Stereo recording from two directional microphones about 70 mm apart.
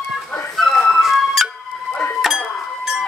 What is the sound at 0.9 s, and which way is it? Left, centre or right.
Music, centre.